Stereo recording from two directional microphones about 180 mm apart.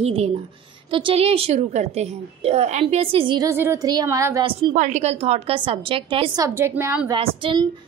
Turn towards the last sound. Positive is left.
turn(degrees=-30)  # may be behind; listen again after turning